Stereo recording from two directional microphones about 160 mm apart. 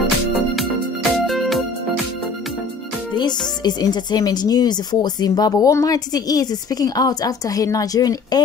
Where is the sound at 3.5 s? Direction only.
25° left (ahead or behind).